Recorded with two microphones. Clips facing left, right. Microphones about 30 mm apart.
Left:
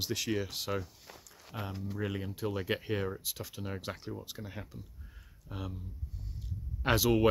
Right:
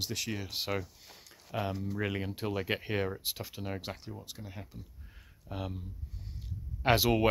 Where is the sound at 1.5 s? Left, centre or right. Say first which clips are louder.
Right 5 dB; right.